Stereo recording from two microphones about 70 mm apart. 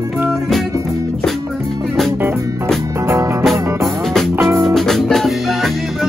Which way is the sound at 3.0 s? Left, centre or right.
Right.